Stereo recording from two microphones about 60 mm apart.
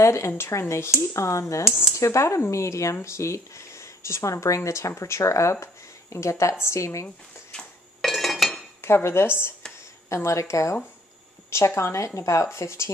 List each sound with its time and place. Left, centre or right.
0.0 s speech: left
8.0 s cutlery: centre
8.8 s speech: left
10.0 s speech: left